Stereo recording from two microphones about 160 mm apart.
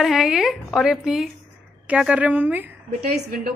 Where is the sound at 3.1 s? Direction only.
75° right (ahead or behind).